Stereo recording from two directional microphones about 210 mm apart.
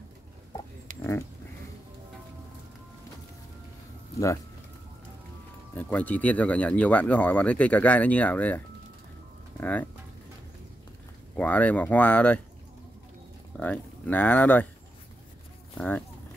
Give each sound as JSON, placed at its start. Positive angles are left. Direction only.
{"t": 0.9, "sound": "a sound", "side_deg": -35}
{"t": 5.8, "sound": "speech", "side_deg": 5}
{"t": 11.3, "sound": "speech", "side_deg": 5}
{"t": 13.6, "sound": "speech", "side_deg": 5}